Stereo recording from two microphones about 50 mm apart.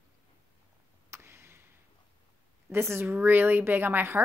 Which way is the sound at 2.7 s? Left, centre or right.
Right.